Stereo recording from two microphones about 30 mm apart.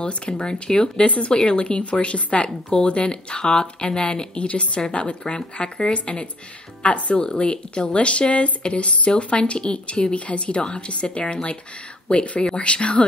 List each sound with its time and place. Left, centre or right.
0.0 s speech: left
0.9 s speech: left
1.3 s speech: left
4.4 s speech: left
6.8 s speech: left
7.2 s speech: left
10.1 s speech: left